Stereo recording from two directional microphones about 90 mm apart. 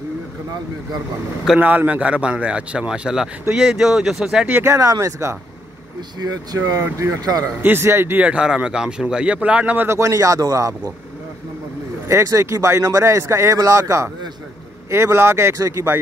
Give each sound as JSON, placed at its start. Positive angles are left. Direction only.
{"t": 1.6, "sound": "a man's voice", "side_deg": -20}
{"t": 4.5, "sound": "speech", "side_deg": -20}
{"t": 4.7, "sound": "speech", "side_deg": -40}
{"t": 6.1, "sound": "speech", "side_deg": -45}
{"t": 6.8, "sound": "speech", "side_deg": -30}
{"t": 7.6, "sound": "speech", "side_deg": -25}
{"t": 8.2, "sound": "a man's voice", "side_deg": -10}
{"t": 9.8, "sound": "speech", "side_deg": -35}
{"t": 12.1, "sound": "speech", "side_deg": -35}